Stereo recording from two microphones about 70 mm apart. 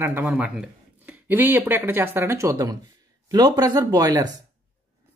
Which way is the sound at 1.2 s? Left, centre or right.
Right.